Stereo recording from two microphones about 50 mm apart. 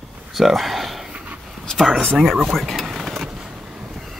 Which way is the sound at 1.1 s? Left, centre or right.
Right.